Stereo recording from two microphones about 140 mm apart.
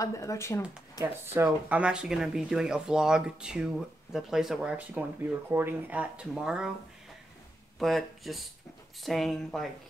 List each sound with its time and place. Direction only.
0.0 s speech: 25° left (ahead or behind)
1.0 s speech: 15° right (ahead or behind)
7.8 s speech: centre (ahead or behind)